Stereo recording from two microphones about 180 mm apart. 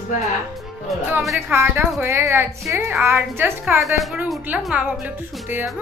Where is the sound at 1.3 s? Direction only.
15° right (ahead or behind).